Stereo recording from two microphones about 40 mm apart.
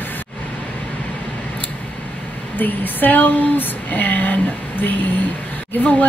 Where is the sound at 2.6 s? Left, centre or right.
Left.